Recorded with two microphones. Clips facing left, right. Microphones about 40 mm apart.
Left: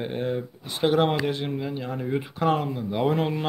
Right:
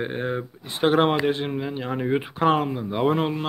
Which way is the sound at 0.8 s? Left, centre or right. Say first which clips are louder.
Right 2 dB; right.